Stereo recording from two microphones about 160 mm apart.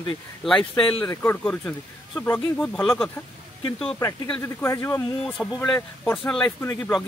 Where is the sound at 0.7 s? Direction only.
30° left (ahead or behind).